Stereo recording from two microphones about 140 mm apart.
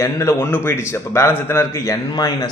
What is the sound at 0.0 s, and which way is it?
Speech, 20° left (ahead or behind).